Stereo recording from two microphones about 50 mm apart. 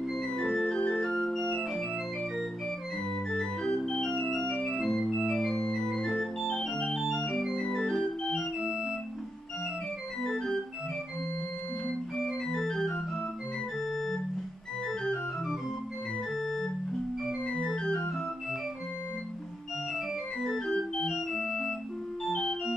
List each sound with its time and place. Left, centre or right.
0.2 s organ: centre
1.6 s organ: centre
3.3 s organ: centre
4.6 s organ: centre
5.7 s organ: centre
8.5 s organ: centre
10.2 s organ: centre
12.4 s organ: centre
16.3 s organ: centre
17.5 s music: centre
20.4 s music: centre
21.1 s organ: centre
22.2 s organ: centre